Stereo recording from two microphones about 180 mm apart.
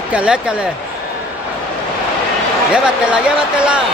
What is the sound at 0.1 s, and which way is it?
Speech, 5° right (ahead or behind).